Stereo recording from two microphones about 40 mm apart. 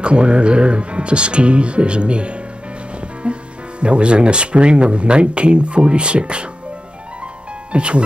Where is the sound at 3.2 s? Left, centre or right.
Right.